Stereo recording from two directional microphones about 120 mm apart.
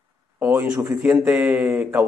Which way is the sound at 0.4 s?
20° right (ahead or behind).